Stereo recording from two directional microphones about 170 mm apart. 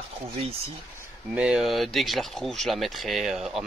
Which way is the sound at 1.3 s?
5° right (ahead or behind).